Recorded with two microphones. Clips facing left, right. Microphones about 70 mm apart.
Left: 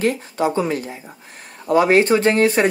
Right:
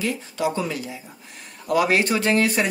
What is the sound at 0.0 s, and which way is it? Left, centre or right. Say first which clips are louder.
Speech: left 6 dB; left.